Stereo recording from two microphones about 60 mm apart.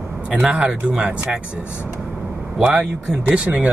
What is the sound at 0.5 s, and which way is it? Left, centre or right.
Speech, centre.